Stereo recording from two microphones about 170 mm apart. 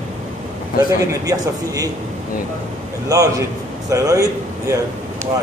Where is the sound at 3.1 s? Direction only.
20° right (ahead or behind).